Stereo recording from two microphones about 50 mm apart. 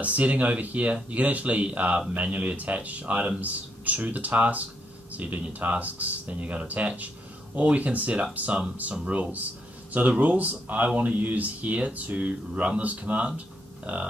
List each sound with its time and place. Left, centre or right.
0.0 s speech: right